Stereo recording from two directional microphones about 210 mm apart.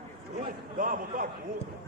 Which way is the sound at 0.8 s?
40° right (ahead or behind).